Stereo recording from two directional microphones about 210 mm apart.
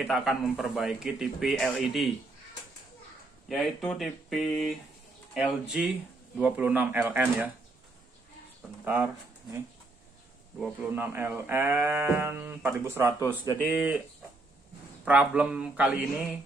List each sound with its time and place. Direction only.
0.0 s a man's voice: centre (ahead or behind)
3.4 s a man's voice: centre (ahead or behind)
5.7 s speech: 5° right (ahead or behind)
8.8 s speech: 5° right (ahead or behind)
10.6 s a man's voice: 5° right (ahead or behind)
15.0 s speech: 5° right (ahead or behind)